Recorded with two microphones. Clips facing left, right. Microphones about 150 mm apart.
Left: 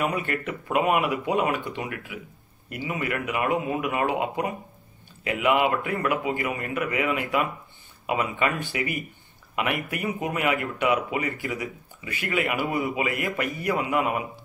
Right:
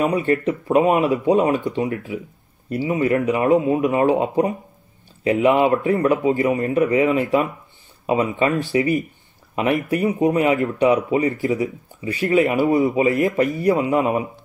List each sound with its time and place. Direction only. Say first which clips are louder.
0.0 s a man's voice: right 8 dB; 30° right (ahead or behind)
9.8 s a man's voice: right 10 dB; 35° right (ahead or behind)
13.2 s speech: right 10 dB; 20° right (ahead or behind)
13.6 s a man's voice: right 5 dB; 35° right (ahead or behind)